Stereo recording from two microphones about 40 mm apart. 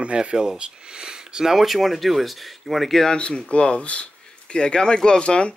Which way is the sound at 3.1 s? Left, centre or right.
Left.